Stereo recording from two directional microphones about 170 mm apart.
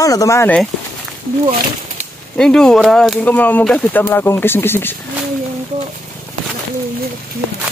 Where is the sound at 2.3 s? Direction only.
5° left (ahead or behind).